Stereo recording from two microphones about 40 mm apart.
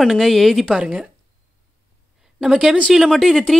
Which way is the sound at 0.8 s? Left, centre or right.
Right.